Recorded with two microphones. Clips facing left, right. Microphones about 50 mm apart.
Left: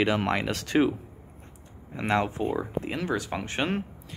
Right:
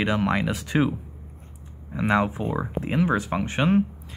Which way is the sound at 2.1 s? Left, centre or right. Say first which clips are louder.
Right 2 dB; centre.